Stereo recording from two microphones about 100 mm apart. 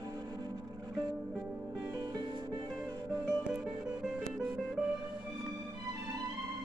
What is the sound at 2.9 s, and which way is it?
Music, 30° right (ahead or behind).